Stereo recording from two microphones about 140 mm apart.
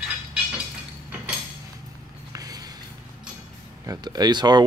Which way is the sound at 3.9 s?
30° right (ahead or behind).